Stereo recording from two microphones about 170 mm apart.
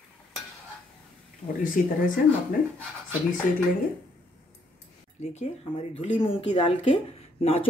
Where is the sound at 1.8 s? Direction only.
50° left (ahead or behind).